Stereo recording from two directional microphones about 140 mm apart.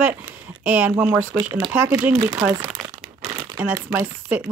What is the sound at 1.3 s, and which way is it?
Speech, 30° right (ahead or behind).